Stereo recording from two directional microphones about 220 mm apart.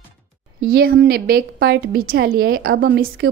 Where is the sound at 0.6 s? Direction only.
40° right (ahead or behind).